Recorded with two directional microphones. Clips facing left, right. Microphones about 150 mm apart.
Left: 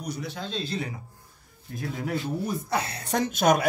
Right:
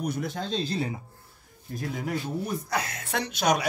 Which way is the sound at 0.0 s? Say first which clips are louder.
Right 3 dB; 50° right (ahead or behind).